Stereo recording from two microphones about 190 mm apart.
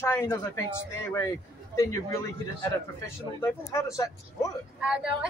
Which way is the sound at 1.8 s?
15° left (ahead or behind).